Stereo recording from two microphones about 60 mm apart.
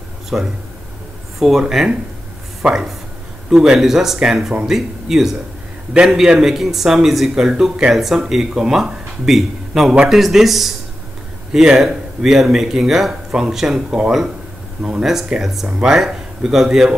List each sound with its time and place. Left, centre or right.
0.3 s speech: centre
1.6 s speech: centre
13.8 s speech: centre